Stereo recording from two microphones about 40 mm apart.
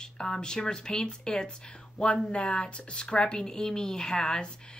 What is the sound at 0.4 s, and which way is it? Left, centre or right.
Speech, centre.